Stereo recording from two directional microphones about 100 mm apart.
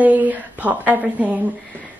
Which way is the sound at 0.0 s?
15° right (ahead or behind).